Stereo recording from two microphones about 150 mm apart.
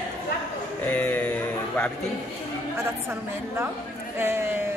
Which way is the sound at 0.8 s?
10° left (ahead or behind).